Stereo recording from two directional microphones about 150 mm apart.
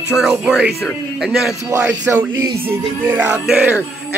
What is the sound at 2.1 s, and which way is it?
Speech, 15° right (ahead or behind).